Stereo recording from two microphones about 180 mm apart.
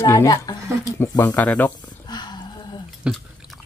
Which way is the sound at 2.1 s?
25° left (ahead or behind).